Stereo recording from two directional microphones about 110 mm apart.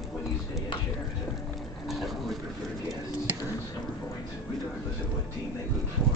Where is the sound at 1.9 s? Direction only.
Centre (ahead or behind).